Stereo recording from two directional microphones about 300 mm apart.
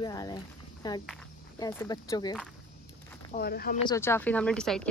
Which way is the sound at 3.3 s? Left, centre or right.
Left.